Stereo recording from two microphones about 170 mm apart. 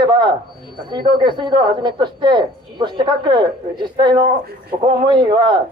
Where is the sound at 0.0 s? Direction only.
25° right (ahead or behind).